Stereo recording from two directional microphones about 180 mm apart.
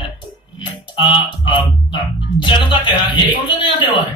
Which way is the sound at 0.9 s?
25° left (ahead or behind).